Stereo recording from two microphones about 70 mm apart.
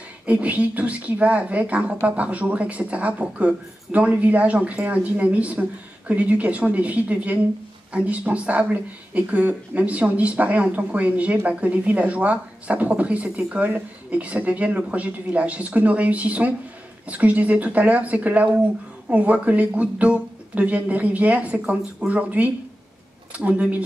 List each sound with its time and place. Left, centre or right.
0.3 s speech: centre